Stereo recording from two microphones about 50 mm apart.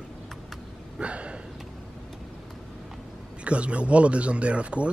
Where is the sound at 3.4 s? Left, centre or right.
Right.